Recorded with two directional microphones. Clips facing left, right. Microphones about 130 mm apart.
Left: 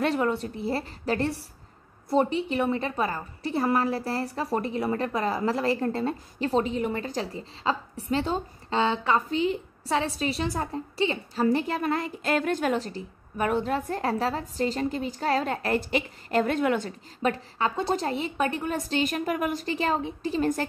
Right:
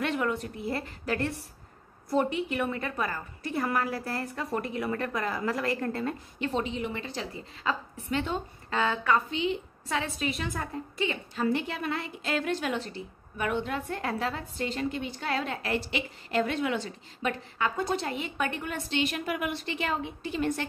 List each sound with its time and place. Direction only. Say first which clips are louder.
0.0 s a woman's voice: left 4 dB; 30° left (ahead or behind)
9.3 s a woman's voice: left 4 dB; 40° left (ahead or behind)